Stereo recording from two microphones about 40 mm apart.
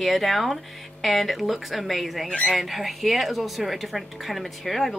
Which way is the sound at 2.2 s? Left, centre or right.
Left.